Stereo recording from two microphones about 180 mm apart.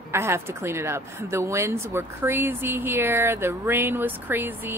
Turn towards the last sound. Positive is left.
turn(degrees=-10)  # may be behind; listen again after turning